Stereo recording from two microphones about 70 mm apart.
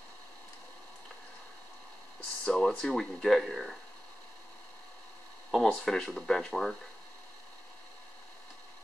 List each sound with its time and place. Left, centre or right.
2.4 s speech: centre
5.5 s speech: centre